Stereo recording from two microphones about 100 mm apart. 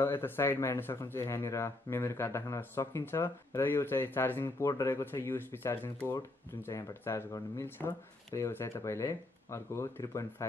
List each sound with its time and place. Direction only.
0.0 s speech: 25° left (ahead or behind)